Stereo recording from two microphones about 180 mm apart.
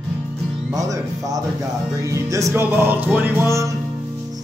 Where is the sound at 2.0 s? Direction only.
15° right (ahead or behind).